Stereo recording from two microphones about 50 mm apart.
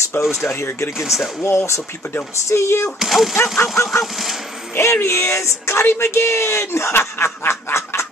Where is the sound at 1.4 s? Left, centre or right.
Left.